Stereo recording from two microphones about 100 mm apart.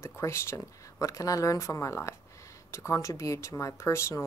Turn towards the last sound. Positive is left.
turn(degrees=30)  # may be behind; listen again after turning